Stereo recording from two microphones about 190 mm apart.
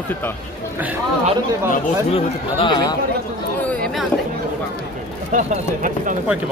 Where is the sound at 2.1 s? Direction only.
30° left (ahead or behind).